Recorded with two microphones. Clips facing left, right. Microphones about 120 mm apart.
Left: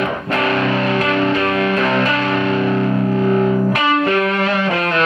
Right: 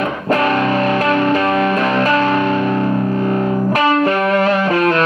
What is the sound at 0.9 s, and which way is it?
Music, 45° right (ahead or behind).